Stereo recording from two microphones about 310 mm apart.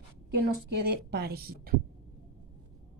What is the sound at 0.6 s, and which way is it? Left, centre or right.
A woman's voice, right.